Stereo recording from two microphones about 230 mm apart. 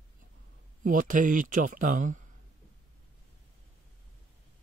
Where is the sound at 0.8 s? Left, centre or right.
Right.